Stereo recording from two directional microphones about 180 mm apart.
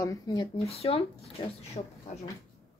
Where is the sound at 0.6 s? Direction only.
35° left (ahead or behind).